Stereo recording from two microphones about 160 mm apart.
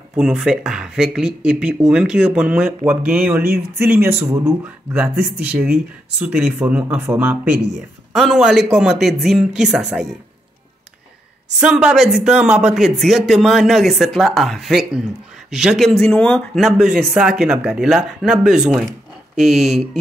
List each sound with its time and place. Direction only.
0.1 s speech: 5° right (ahead or behind)
11.6 s speech: 5° right (ahead or behind)